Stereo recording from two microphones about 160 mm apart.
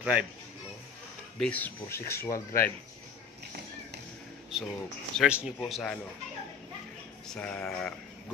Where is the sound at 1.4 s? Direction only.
10° left (ahead or behind).